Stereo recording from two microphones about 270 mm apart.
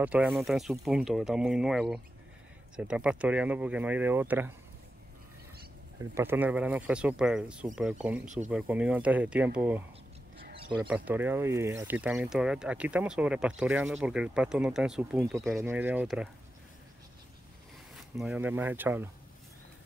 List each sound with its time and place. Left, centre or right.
0.0 s speech: centre
5.9 s speech: centre
10.5 s a sound: centre
10.8 s speech: centre
18.1 s speech: centre